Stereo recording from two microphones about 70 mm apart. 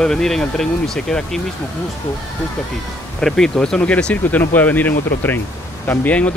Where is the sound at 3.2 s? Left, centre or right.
Centre.